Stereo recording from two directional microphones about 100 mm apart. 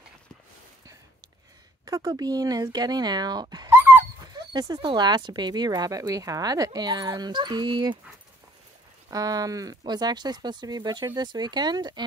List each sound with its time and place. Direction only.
1.9 s speech: 40° right (ahead or behind)
3.7 s dog: 20° right (ahead or behind)
4.3 s speech: 40° right (ahead or behind)
9.1 s speech: 40° right (ahead or behind)